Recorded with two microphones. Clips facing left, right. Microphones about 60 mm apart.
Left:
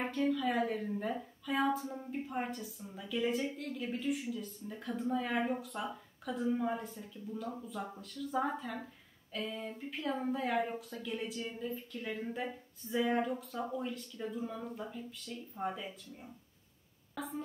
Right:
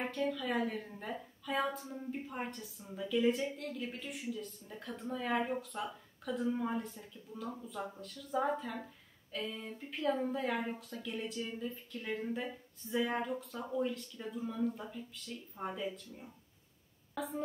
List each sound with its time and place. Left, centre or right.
0.0 s a woman's voice: centre